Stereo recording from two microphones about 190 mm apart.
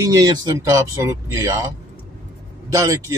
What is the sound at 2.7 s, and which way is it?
Speech, 15° right (ahead or behind).